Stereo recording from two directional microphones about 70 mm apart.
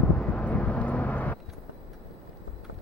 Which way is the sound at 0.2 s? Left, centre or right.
Centre.